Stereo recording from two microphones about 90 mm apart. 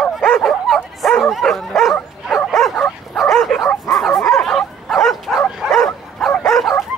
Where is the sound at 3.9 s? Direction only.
Centre (ahead or behind).